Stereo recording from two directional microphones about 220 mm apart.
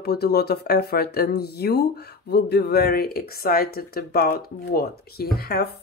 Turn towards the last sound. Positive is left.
turn(degrees=45)  # may be behind; listen again after turning